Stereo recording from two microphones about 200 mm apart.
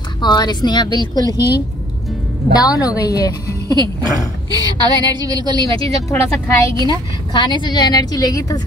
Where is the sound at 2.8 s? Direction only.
20° left (ahead or behind).